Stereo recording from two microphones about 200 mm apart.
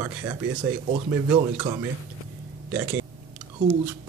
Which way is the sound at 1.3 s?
20° right (ahead or behind).